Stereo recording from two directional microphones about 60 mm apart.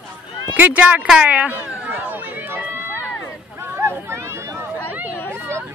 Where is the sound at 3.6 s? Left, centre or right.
Right.